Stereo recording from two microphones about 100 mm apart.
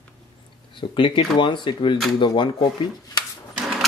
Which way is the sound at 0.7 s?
60° left (ahead or behind).